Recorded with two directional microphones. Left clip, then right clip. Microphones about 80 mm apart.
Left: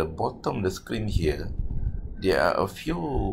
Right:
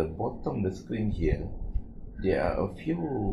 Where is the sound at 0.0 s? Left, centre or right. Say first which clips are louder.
Left 4 dB; left.